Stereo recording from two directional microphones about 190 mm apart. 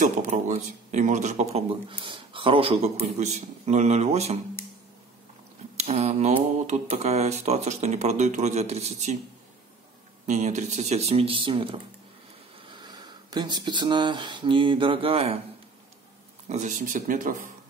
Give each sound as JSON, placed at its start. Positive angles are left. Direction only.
{"t": 0.0, "sound": "speech", "side_deg": -40}
{"t": 5.8, "sound": "speech", "side_deg": -35}
{"t": 10.2, "sound": "speech", "side_deg": -40}
{"t": 16.4, "sound": "speech", "side_deg": -40}